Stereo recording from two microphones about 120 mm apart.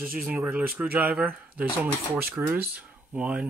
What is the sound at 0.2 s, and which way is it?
Speech, 10° right (ahead or behind).